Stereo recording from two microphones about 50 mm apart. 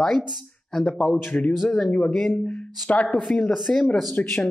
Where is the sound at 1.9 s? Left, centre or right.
Centre.